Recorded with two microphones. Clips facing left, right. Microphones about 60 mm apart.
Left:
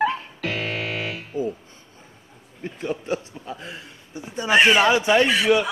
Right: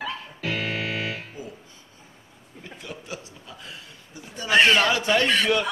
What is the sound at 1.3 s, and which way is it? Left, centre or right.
Music, left.